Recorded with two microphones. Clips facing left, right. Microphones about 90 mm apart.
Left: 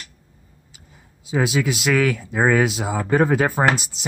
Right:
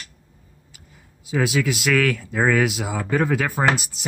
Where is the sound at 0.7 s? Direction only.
25° left (ahead or behind).